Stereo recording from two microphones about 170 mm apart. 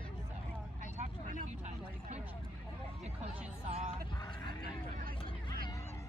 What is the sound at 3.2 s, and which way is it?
Music, 40° right (ahead or behind).